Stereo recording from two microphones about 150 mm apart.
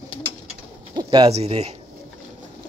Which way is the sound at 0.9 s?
35° right (ahead or behind).